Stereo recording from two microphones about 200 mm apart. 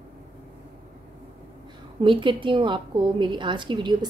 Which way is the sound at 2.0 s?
25° right (ahead or behind).